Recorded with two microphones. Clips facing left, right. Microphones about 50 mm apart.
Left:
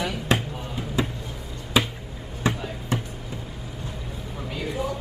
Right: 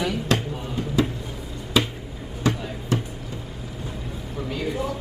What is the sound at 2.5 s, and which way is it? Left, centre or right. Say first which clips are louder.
Music: right 2 dB; left.